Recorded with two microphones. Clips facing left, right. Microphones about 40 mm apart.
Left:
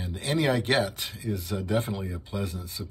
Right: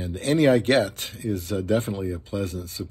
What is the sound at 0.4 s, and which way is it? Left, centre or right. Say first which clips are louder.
Speech: right 6 dB; right.